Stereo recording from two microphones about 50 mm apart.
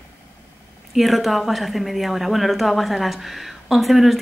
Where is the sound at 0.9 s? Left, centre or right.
Centre.